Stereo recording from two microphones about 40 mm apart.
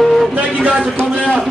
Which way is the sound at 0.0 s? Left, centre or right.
Centre.